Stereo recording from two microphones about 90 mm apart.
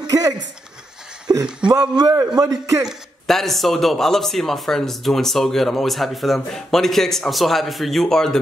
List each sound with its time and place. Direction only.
0.0 s a sound: 40° right (ahead or behind)
1.3 s a man's voice: 45° right (ahead or behind)
2.8 s speech: centre (ahead or behind)